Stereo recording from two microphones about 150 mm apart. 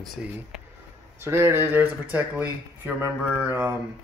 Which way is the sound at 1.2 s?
15° right (ahead or behind).